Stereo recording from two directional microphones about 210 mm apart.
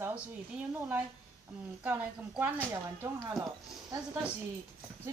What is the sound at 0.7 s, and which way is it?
Speech, 10° right (ahead or behind).